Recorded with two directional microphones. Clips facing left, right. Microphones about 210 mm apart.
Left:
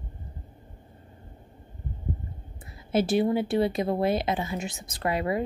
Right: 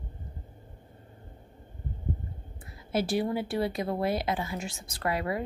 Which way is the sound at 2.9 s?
25° left (ahead or behind).